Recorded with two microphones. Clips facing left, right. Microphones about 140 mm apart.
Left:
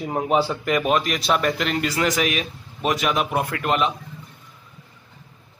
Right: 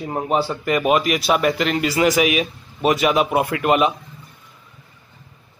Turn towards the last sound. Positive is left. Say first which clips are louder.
# right 5 dB
turn(degrees=-10)  # may be behind; listen again after turning